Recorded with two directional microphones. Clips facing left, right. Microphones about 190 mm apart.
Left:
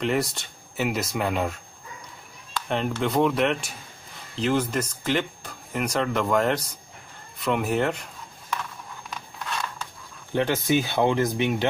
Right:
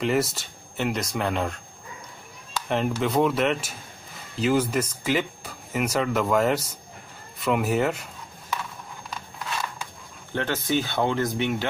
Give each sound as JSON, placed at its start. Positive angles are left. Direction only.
{"t": 0.0, "sound": "speech", "side_deg": 0}
{"t": 7.3, "sound": "a sound", "side_deg": -5}
{"t": 10.3, "sound": "speech", "side_deg": 15}